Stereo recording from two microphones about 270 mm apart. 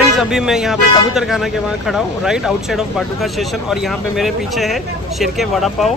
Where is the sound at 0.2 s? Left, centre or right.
Centre.